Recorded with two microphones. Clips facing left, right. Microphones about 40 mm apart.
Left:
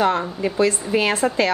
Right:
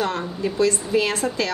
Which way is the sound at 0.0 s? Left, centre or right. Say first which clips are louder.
Left 4 dB; left.